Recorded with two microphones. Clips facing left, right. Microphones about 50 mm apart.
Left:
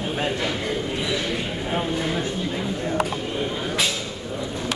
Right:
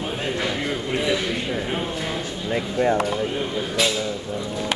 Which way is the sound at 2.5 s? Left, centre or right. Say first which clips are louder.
Right 5 dB; right.